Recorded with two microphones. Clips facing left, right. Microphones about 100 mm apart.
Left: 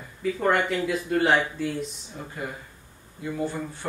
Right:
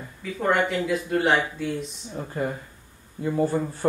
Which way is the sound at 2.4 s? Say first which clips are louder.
Right 8 dB; 40° right (ahead or behind).